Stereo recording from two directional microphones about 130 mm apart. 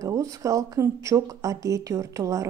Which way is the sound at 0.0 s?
25° right (ahead or behind).